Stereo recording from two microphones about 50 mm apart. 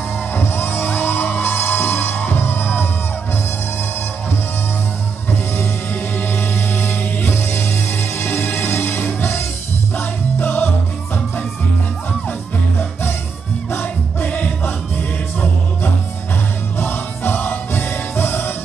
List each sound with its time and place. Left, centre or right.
0.3 s music: left
5.6 s music: left
13.7 s music: left
14.3 s music: left
16.7 s music: left